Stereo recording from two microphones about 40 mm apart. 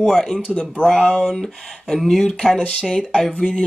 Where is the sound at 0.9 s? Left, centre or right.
Left.